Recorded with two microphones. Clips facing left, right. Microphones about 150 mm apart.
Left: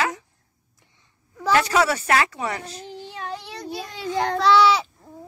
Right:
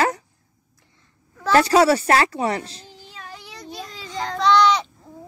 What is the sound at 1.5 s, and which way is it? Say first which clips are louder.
A woman's voice: right 6 dB; 35° right (ahead or behind).